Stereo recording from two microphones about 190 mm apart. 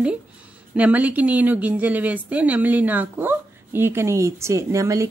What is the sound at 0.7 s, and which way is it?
A woman's voice, 10° right (ahead or behind).